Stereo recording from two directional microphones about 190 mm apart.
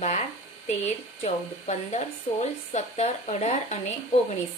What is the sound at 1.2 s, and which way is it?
Speech, 35° left (ahead or behind).